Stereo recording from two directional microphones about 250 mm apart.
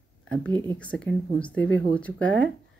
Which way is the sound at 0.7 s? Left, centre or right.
Centre.